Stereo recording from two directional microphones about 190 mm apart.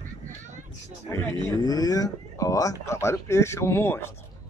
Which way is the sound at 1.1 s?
15° left (ahead or behind).